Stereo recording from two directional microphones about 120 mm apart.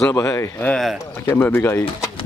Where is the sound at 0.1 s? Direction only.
25° left (ahead or behind).